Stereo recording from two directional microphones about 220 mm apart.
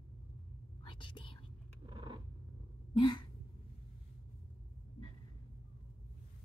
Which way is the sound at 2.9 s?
20° left (ahead or behind).